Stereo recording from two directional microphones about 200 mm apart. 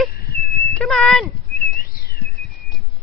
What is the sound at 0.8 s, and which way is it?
Speech, 5° left (ahead or behind).